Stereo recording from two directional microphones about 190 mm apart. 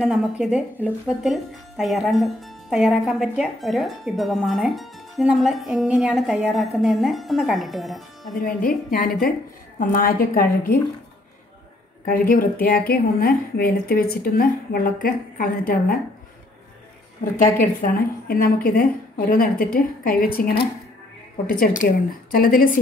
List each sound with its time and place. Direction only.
0.0 s speech: centre (ahead or behind)
8.4 s a woman's voice: 45° left (ahead or behind)
12.1 s a woman's voice: 50° left (ahead or behind)
17.4 s a woman's voice: 45° left (ahead or behind)
22.3 s a woman's voice: 45° left (ahead or behind)